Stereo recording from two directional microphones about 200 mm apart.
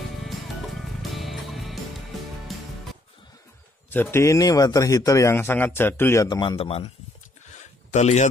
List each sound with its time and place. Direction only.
1.1 s music: centre (ahead or behind)
3.9 s speech: 10° left (ahead or behind); by 6.9 s 30° left (ahead or behind)
7.4 s a sound: 35° left (ahead or behind)